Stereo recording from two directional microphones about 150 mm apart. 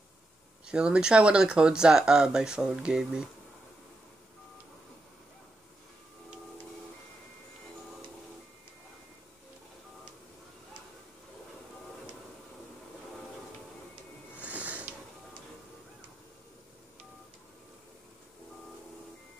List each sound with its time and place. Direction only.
0.7 s speech: 5° right (ahead or behind)
14.4 s sniff: 10° right (ahead or behind)